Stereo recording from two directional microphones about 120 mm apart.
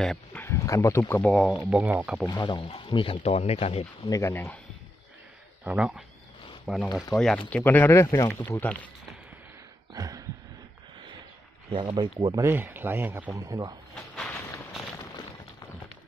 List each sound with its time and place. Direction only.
0.3 s a sound: 20° left (ahead or behind)
1.3 s speech: centre (ahead or behind)
1.7 s speech: 10° right (ahead or behind)
2.2 s speech: 40° left (ahead or behind)
3.2 s speech: 60° left (ahead or behind)
4.1 s speech: 25° left (ahead or behind)
5.6 s speech: 10° right (ahead or behind); by 8.8 s 15° left (ahead or behind)
9.9 s a sound: 30° right (ahead or behind)
11.7 s speech: 45° right (ahead or behind)
12.4 s speech: 20° right (ahead or behind)
13.3 s speech: 25° right (ahead or behind)
13.9 s a sound: centre (ahead or behind)